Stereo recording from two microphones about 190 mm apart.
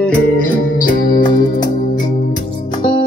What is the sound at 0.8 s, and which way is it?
Music, 45° left (ahead or behind).